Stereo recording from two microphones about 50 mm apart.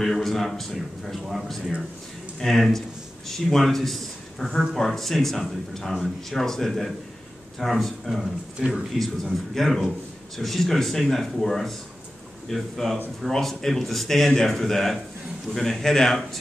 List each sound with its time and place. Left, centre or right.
0.0 s a man's voice: centre
8.5 s a man's voice: centre
8.9 s a man's voice: centre